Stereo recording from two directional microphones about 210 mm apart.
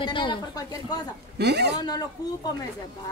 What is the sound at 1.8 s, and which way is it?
Speech, 20° left (ahead or behind).